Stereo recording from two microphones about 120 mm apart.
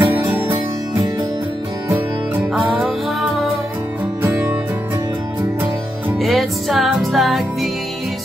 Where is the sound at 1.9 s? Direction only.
15° right (ahead or behind).